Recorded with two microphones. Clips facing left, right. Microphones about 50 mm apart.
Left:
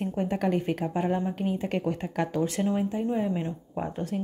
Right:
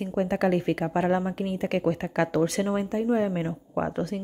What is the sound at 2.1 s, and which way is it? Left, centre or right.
A woman's voice, right.